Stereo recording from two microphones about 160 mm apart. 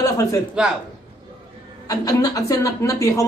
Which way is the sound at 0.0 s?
20° left (ahead or behind).